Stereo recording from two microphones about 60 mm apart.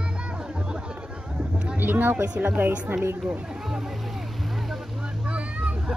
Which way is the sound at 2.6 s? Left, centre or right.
Right.